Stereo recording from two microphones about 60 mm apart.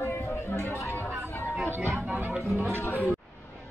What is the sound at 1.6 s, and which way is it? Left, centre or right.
Music, right.